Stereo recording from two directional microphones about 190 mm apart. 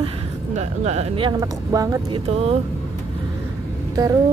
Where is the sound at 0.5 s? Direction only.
35° right (ahead or behind); by 2.2 s 20° right (ahead or behind).